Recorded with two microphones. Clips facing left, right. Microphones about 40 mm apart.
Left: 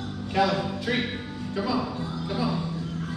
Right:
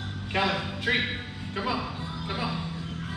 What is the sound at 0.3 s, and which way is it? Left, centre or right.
Speech, right.